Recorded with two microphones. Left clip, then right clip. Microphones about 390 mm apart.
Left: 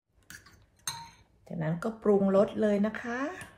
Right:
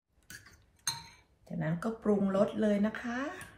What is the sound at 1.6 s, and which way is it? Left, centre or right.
A woman's voice, centre.